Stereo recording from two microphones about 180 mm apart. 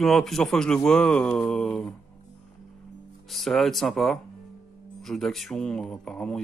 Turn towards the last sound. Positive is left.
turn(degrees=5)  # may be behind; listen again after turning